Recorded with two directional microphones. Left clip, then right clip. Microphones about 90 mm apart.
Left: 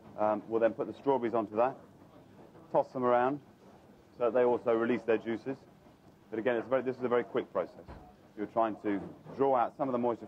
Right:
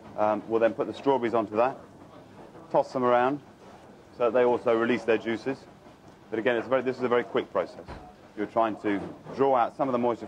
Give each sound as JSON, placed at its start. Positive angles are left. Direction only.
{"t": 0.1, "sound": "speech", "side_deg": 30}